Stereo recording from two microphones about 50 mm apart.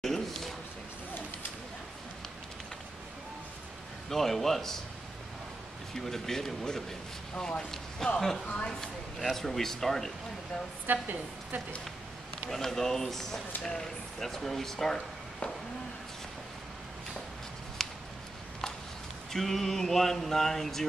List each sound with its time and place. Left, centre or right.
0.0 s a sound: centre
4.1 s speech: centre
5.9 s speech: centre
10.9 s a woman's voice: right
12.4 s speech: centre
17.8 s a sound: centre
19.3 s speech: centre